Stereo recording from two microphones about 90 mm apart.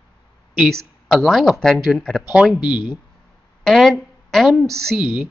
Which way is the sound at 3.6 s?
Centre (ahead or behind).